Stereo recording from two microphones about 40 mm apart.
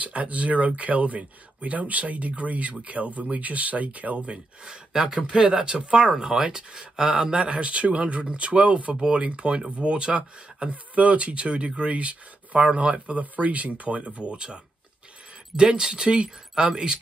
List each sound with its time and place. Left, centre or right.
0.0 s speech: right
4.9 s speech: centre
5.2 s speech: right
13.2 s speech: right